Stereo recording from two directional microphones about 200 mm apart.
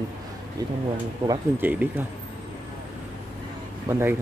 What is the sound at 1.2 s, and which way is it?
Speech, 20° right (ahead or behind).